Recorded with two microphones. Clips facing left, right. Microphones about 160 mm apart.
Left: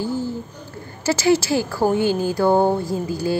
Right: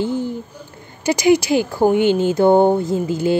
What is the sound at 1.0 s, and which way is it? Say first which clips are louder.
Speech: right 3 dB; 15° right (ahead or behind).